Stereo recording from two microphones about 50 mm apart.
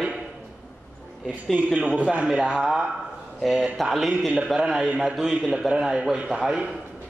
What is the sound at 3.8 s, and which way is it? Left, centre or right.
Speech, centre.